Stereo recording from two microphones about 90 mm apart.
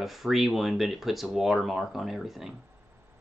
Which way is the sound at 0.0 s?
Centre (ahead or behind).